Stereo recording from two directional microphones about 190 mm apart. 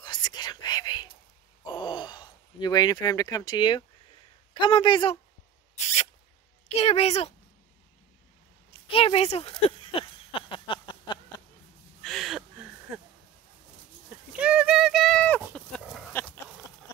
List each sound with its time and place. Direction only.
0.0 s whispering: 20° left (ahead or behind)
1.7 s a sound: 25° left (ahead or behind)
4.6 s speech: 25° left (ahead or behind)
5.8 s spray: 35° left (ahead or behind)
6.7 s a woman's voice: 35° left (ahead or behind)
8.8 s a sound: 30° left (ahead or behind)
12.0 s a sound: centre (ahead or behind)
14.4 s clip-clop: 5° right (ahead or behind)
15.5 s goat: centre (ahead or behind)
16.1 s goat: 10° left (ahead or behind)